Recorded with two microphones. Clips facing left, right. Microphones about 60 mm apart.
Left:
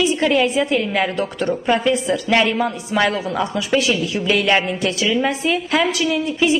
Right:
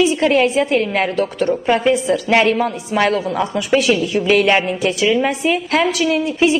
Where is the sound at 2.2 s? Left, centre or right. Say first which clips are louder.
Right 3 dB; right.